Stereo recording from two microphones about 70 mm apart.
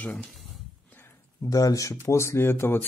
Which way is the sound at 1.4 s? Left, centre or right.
Left.